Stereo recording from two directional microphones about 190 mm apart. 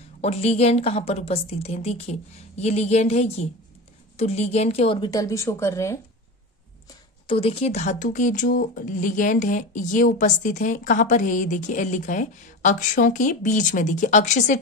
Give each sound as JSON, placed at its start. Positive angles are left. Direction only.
{"t": 0.2, "sound": "a woman's voice", "side_deg": 35}
{"t": 6.9, "sound": "speech", "side_deg": 30}